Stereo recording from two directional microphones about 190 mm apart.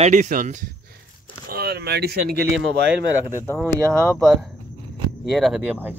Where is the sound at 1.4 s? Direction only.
55° right (ahead or behind).